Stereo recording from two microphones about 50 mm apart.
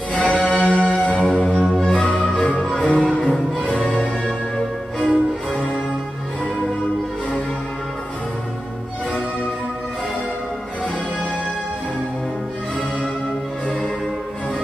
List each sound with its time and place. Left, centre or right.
0.1 s music: centre